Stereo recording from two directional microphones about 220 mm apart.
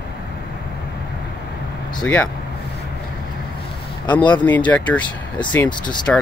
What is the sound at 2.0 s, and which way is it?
Speech, 5° left (ahead or behind).